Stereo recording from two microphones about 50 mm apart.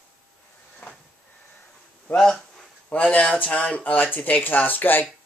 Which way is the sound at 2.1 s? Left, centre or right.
Centre.